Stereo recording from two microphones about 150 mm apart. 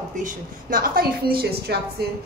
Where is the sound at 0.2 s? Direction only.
70° right (ahead or behind).